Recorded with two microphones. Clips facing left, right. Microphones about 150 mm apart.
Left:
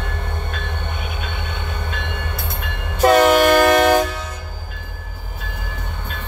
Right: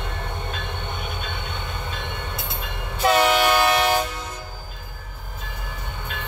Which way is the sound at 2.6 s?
50° left (ahead or behind).